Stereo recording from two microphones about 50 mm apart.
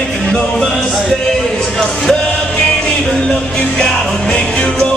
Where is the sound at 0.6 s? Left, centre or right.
Centre.